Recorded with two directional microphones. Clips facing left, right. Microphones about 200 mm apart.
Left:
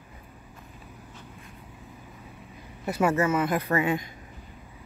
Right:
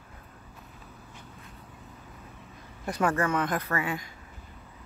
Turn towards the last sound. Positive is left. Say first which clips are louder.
# left 6 dB
turn(degrees=20)  # may be behind; listen again after turning